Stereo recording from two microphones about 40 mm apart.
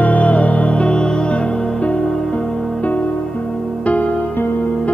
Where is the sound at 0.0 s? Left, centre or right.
Left.